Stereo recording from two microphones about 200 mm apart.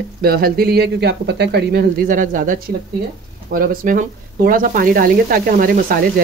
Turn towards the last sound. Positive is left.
turn(degrees=-45)  # may be behind; listen again after turning